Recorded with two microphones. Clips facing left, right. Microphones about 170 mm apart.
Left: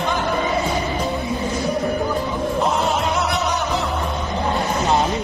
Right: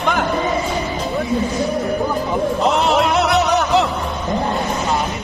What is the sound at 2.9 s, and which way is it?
Music, 75° right (ahead or behind).